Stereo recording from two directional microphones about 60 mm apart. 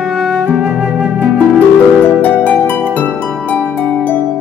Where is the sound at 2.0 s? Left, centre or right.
Left.